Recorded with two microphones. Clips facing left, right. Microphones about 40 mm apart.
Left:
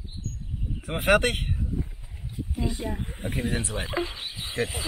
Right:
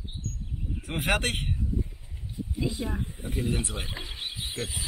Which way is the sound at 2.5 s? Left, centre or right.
Left.